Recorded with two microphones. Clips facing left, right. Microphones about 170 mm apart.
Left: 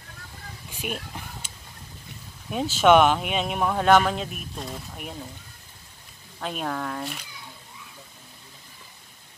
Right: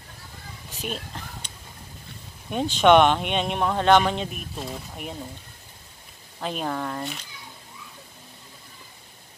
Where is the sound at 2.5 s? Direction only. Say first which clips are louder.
Right 1 dB; 5° left (ahead or behind).